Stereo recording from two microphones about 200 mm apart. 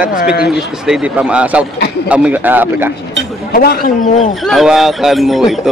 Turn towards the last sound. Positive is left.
turn(degrees=0)  # may be behind; listen again after turning